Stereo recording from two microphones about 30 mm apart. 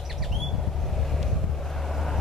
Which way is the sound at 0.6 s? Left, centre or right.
Centre.